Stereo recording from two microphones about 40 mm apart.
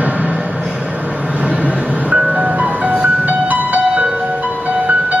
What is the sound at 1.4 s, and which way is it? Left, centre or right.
Vehicle, right.